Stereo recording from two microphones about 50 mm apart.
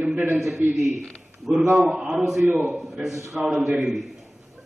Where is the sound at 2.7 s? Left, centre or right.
Centre.